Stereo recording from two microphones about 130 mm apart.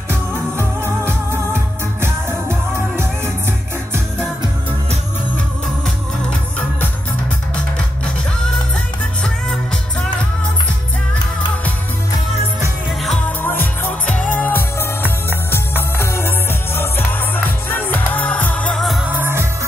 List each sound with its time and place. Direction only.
0.1 s music: 20° right (ahead or behind)
12.5 s music: centre (ahead or behind)
13.4 s music: 15° left (ahead or behind)
19.1 s music: 20° right (ahead or behind)